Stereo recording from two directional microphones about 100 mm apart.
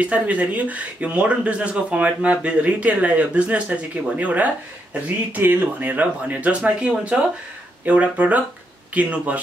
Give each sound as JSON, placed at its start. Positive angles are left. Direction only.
{"t": 0.0, "sound": "speech", "side_deg": -15}